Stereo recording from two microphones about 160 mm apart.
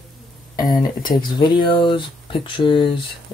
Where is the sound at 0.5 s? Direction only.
25° left (ahead or behind).